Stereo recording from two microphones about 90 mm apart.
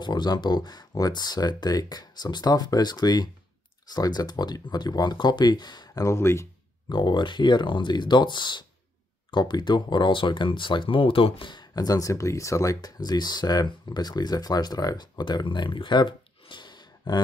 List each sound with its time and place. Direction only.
0.0 s speech: 50° left (ahead or behind)
6.0 s speech: 30° left (ahead or behind)
6.9 s speech: 55° left (ahead or behind)